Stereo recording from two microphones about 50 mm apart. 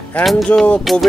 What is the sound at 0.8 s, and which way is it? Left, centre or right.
Speech, centre.